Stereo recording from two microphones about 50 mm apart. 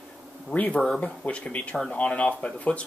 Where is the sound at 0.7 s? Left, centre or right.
Centre.